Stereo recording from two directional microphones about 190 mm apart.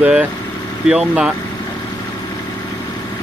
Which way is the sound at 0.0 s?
5° right (ahead or behind).